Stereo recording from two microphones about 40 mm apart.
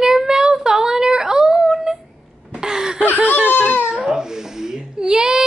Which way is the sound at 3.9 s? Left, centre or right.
Centre.